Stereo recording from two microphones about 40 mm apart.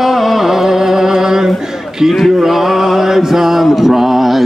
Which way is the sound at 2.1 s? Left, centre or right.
Centre.